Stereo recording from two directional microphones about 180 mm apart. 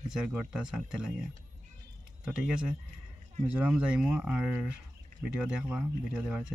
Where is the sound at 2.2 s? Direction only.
5° right (ahead or behind).